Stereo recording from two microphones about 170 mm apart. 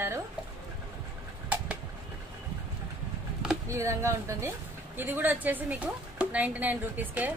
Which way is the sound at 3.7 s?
15° right (ahead or behind).